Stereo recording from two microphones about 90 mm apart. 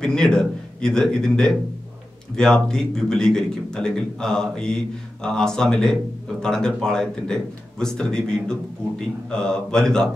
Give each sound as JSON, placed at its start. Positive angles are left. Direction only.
{"t": 0.0, "sound": "a man's voice", "side_deg": 5}